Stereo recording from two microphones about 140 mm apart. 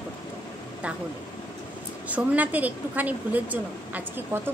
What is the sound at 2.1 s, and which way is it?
Speech, 10° right (ahead or behind).